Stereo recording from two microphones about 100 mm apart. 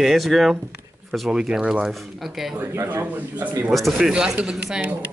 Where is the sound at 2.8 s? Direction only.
15° right (ahead or behind).